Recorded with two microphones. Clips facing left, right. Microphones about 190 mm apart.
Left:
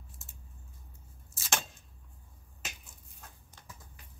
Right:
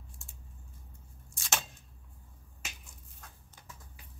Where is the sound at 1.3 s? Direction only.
Centre (ahead or behind).